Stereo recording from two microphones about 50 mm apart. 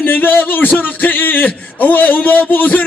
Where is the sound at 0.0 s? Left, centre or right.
Left.